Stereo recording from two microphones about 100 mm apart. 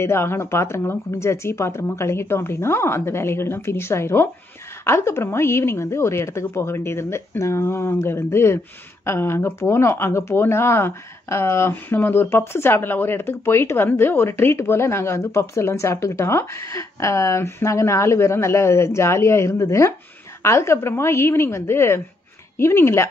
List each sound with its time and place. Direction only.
0.0 s speech: 25° left (ahead or behind)